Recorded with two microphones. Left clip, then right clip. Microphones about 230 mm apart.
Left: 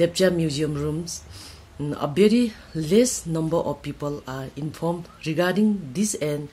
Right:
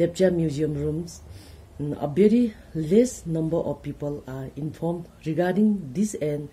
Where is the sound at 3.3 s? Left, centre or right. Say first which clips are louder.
Left 1 dB; left.